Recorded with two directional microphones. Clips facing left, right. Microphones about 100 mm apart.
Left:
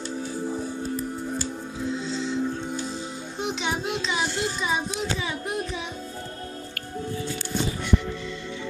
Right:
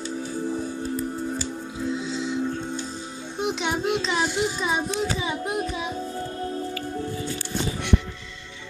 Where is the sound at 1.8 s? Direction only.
5° right (ahead or behind).